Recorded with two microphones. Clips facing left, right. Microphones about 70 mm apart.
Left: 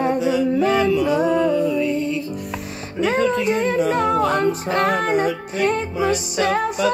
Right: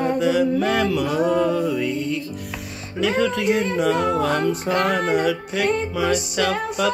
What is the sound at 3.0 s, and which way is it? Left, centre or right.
Speech, left.